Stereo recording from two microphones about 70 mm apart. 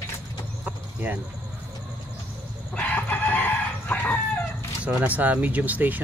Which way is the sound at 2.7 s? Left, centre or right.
Centre.